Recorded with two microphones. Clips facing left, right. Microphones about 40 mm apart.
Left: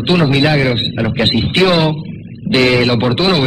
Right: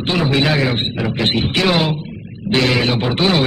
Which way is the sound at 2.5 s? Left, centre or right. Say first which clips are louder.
Left 4 dB; left.